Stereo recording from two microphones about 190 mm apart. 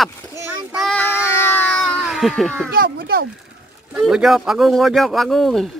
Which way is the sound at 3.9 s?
Centre (ahead or behind).